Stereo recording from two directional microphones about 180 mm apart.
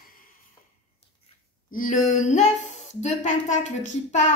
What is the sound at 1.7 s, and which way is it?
A woman's voice, 45° left (ahead or behind).